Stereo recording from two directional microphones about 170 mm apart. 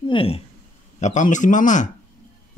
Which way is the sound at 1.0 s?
45° left (ahead or behind).